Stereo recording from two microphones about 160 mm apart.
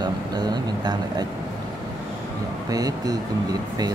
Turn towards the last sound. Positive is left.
turn(degrees=-25)  # may be behind; listen again after turning